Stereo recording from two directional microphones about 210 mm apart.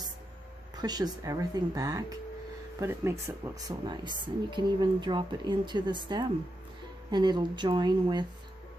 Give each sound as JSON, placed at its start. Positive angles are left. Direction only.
{"t": 0.7, "sound": "speech", "side_deg": -20}